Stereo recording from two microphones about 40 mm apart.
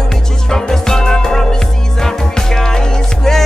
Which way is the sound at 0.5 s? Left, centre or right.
Centre.